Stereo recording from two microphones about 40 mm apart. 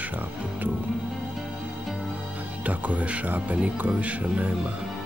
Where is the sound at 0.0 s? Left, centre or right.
Right.